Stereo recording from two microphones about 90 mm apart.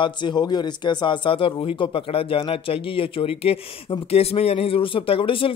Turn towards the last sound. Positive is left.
turn(degrees=80)